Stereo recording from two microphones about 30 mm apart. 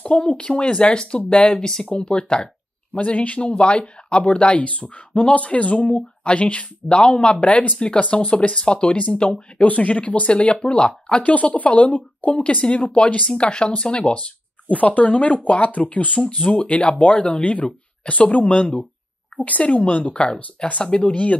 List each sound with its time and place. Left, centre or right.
0.1 s speech: left
2.9 s speech: left
7.3 s speech: left
7.7 s speech: left
9.6 s speech: left
11.2 s speech: left
13.4 s speech: left
14.7 s speech: left
15.7 s speech: left
16.4 s speech: left
19.4 s speech: left
19.8 s speech: left